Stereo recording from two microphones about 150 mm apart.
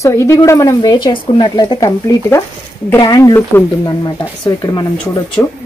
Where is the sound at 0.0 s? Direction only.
20° left (ahead or behind).